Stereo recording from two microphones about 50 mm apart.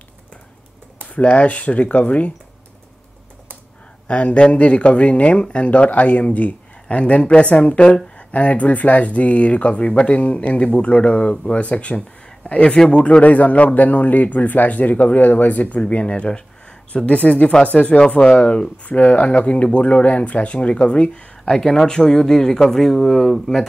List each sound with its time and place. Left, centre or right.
1.0 s speech: left
4.1 s speech: left
17.6 s speech: left
17.9 s speech: centre
21.5 s speech: centre